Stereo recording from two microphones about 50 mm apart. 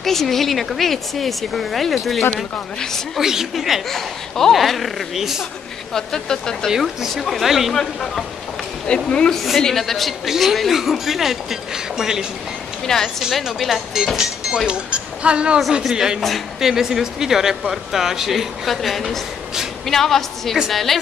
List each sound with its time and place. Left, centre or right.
0.0 s speech: centre
5.9 s speech: centre
6.7 s speech: centre
7.7 s speech: centre
9.3 s speech: centre
12.8 s speech: centre
13.3 s speech: centre
14.7 s a woman's voice: right; by 21.0 s centre